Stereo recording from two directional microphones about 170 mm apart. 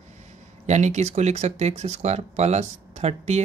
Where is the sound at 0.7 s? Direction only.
45° right (ahead or behind).